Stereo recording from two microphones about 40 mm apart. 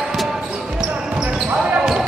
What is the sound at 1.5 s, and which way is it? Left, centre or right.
Basketball bounce, right.